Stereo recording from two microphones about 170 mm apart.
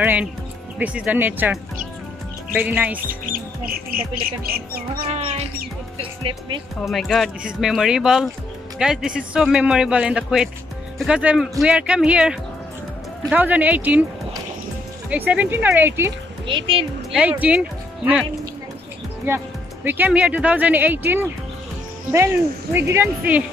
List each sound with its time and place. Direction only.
0.0 s speech: 10° right (ahead or behind)
3.1 s speech: 55° right (ahead or behind)
5.1 s music: 40° right (ahead or behind)
5.9 s speech: 30° right (ahead or behind)
6.8 s speech: centre (ahead or behind)
15.0 s speech: 10° right (ahead or behind)
16.4 s speech: 30° right (ahead or behind)
17.1 s speech: 10° right (ahead or behind)
19.2 s speech: 15° right (ahead or behind)